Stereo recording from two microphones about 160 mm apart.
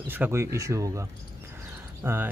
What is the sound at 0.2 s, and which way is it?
Speech, 15° right (ahead or behind).